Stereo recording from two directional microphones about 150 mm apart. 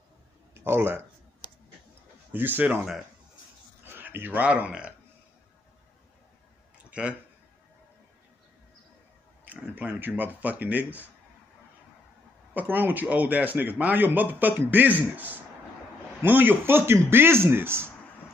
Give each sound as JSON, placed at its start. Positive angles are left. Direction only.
{"t": 0.6, "sound": "speech", "side_deg": -15}
{"t": 2.3, "sound": "speech", "side_deg": -15}
{"t": 3.8, "sound": "speech", "side_deg": -15}
{"t": 6.9, "sound": "a sound", "side_deg": -10}
{"t": 9.4, "sound": "speech", "side_deg": -10}
{"t": 12.5, "sound": "speech", "side_deg": -10}